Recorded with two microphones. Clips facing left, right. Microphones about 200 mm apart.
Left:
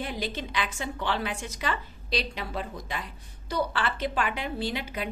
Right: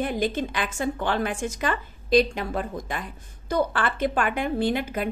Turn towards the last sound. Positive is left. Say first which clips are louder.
# right 7 dB
turn(degrees=-50)  # may be behind; listen again after turning